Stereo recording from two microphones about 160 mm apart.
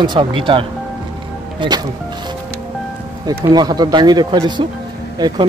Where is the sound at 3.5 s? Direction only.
25° right (ahead or behind).